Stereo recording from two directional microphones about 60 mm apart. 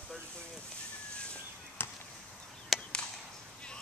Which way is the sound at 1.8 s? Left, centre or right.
Left.